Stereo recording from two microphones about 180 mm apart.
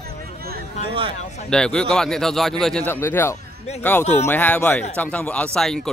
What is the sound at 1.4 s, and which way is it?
A man's voice, 5° left (ahead or behind).